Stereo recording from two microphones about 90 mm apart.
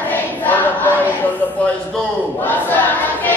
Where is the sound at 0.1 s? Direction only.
20° left (ahead or behind).